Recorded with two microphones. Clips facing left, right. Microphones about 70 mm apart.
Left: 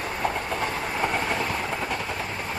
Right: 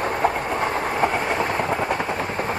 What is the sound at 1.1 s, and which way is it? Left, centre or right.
Train, right.